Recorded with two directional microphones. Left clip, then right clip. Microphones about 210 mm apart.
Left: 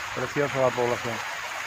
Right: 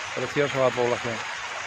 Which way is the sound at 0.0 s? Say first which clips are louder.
Right 1 dB; 55° left (ahead or behind).